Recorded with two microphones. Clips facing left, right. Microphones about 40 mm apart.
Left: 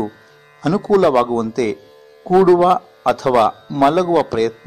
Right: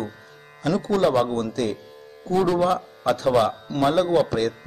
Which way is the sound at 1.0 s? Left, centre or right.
Left.